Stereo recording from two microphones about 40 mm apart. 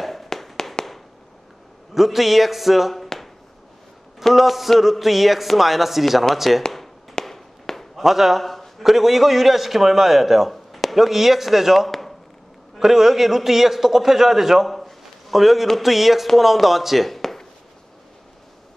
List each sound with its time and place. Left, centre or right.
0.0 s tap: centre
2.0 s speech: centre
4.3 s speech: centre
7.2 s fireworks: centre
8.0 s a man's voice: centre
17.2 s a sound: centre